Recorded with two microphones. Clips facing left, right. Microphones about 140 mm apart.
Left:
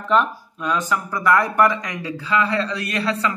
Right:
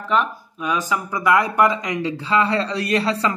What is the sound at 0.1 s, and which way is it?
Speech, 5° right (ahead or behind).